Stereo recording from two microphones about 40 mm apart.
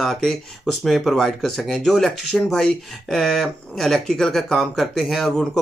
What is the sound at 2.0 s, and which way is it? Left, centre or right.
A man's voice, centre.